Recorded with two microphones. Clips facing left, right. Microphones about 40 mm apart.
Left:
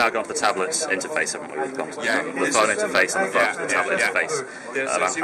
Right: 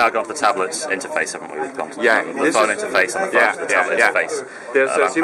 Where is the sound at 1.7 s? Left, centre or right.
Centre.